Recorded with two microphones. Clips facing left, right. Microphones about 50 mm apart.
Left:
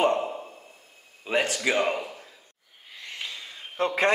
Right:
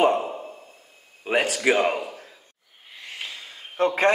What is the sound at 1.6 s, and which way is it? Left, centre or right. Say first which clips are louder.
Speech: right 4 dB; right.